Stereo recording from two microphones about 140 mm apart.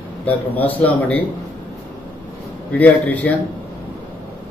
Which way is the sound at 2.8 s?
10° left (ahead or behind).